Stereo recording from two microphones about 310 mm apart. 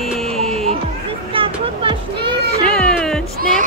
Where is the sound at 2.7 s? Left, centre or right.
Centre.